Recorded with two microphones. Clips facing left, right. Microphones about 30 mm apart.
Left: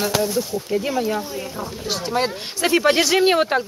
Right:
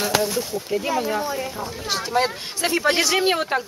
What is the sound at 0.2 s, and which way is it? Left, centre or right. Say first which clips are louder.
Speech: left 2 dB; right.